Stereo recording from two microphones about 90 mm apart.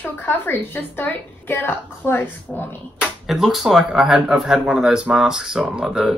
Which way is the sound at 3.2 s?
Centre (ahead or behind).